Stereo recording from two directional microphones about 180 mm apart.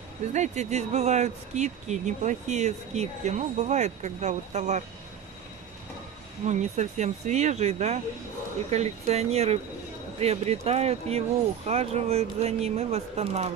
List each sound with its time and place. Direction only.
0.3 s speech: 40° right (ahead or behind)
6.4 s speech: 40° right (ahead or behind)